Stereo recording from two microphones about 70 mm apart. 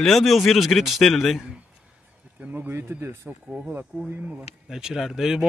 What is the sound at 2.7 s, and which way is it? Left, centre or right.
Speech, right.